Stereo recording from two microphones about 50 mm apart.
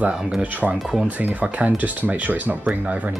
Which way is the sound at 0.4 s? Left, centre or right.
Right.